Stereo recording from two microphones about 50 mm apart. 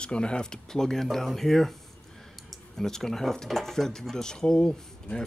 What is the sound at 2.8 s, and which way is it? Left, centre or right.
Speech, centre.